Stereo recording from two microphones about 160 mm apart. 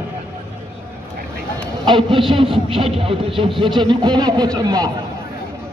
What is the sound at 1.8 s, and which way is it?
A man's voice, 30° right (ahead or behind).